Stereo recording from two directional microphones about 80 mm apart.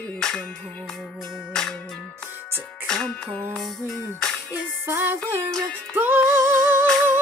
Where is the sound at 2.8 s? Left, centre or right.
Centre.